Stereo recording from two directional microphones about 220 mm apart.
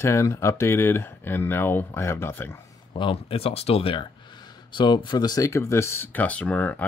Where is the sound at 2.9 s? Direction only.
25° left (ahead or behind); by 6.8 s 5° left (ahead or behind).